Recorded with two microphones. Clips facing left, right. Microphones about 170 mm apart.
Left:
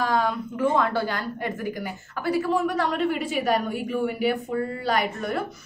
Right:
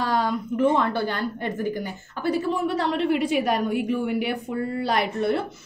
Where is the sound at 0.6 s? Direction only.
25° right (ahead or behind).